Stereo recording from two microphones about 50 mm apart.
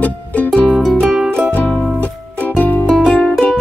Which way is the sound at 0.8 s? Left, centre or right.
Centre.